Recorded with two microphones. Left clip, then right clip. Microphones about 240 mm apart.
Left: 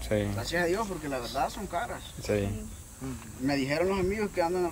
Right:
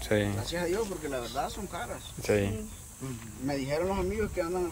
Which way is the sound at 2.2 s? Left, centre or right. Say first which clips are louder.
Right 2 dB; centre.